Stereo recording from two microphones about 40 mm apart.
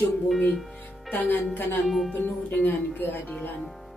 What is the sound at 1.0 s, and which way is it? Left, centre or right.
A woman's voice, left.